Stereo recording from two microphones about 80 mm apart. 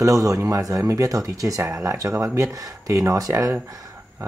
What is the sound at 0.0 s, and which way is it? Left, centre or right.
A man's voice, right.